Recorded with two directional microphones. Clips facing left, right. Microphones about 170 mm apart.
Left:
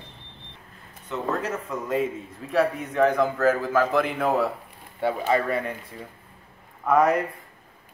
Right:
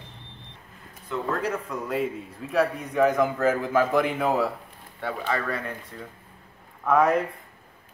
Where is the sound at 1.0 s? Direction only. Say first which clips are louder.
Even; 5° left (ahead or behind).